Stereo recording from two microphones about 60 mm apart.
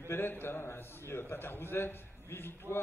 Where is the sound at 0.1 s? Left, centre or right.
Left.